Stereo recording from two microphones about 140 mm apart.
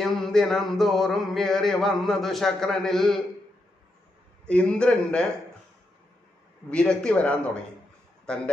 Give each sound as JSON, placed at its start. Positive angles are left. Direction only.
{"t": 0.0, "sound": "speech", "side_deg": 0}
{"t": 4.5, "sound": "a man's voice", "side_deg": 10}
{"t": 6.7, "sound": "a man's voice", "side_deg": 5}